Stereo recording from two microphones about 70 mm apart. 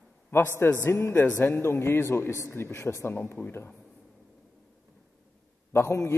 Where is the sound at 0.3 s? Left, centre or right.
Left.